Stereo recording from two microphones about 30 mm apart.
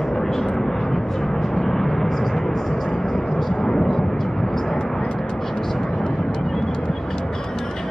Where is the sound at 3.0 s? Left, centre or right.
Left.